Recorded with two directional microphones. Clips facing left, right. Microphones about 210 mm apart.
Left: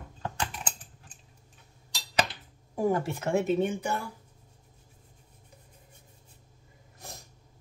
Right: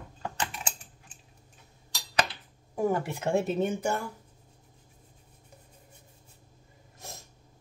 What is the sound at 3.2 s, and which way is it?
Speech, 35° right (ahead or behind).